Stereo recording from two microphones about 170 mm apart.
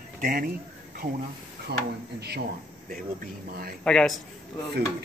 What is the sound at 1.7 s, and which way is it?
Speech, 75° right (ahead or behind).